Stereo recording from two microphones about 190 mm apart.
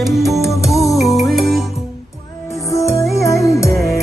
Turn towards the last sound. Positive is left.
turn(degrees=15)  # may be behind; listen again after turning